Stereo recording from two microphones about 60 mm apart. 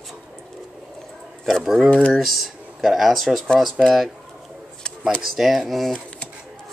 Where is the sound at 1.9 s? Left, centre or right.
Centre.